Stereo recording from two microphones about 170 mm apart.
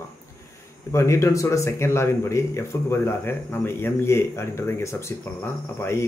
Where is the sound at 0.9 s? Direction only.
15° left (ahead or behind).